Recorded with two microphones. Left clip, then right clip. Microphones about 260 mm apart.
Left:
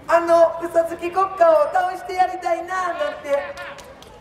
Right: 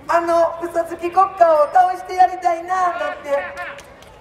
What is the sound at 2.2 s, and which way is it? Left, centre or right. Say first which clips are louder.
Speech: right 5 dB; centre.